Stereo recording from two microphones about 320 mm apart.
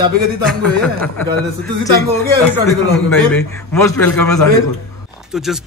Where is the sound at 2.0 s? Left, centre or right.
Right.